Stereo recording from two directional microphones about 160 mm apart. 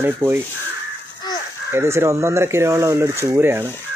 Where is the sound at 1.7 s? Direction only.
15° right (ahead or behind).